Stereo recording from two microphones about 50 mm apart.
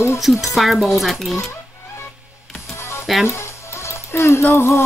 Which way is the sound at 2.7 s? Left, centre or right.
Left.